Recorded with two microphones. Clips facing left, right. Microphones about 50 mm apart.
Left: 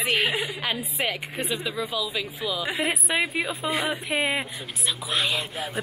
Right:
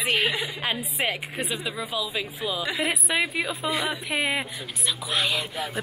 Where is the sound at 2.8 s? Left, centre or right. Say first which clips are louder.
Even; centre.